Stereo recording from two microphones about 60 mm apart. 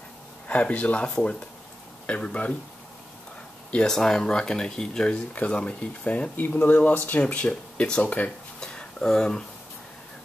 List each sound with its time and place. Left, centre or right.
0.5 s speech: left
3.7 s speech: centre; by 7.2 s left
7.2 s speech: left
8.5 s a sound: centre